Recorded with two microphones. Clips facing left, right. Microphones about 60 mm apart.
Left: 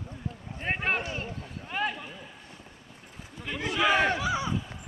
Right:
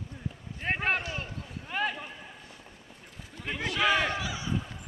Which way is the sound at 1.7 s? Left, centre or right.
Centre.